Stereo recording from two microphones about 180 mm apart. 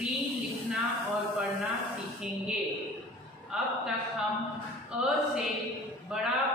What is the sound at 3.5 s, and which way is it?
Speech, 5° right (ahead or behind).